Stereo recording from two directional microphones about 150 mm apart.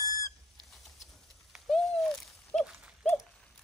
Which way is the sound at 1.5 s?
Centre (ahead or behind).